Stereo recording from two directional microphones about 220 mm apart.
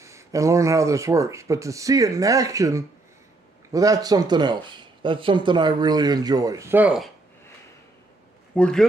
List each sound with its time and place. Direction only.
0.0 s speech: 15° right (ahead or behind)
8.5 s a man's voice: 5° left (ahead or behind)